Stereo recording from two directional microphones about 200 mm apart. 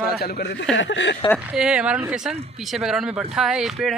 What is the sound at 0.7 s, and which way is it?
Speech, 65° left (ahead or behind).